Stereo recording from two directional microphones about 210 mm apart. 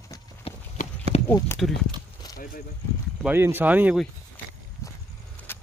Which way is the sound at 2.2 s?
20° left (ahead or behind).